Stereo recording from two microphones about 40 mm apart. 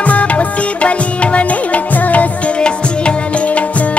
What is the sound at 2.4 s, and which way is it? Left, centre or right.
Music, left.